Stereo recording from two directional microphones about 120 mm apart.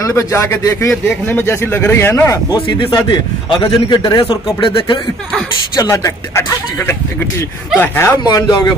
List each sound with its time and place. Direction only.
0.0 s speech: 25° left (ahead or behind)
2.8 s a man's voice: 40° left (ahead or behind)
5.8 s speech: 25° left (ahead or behind)
8.2 s a man's voice: 35° left (ahead or behind)